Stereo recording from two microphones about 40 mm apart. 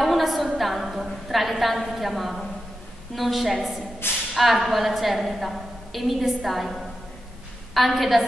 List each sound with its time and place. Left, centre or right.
0.0 s a sound: centre
0.6 s a woman's voice: centre
4.0 s speech: left
4.4 s a woman's voice: centre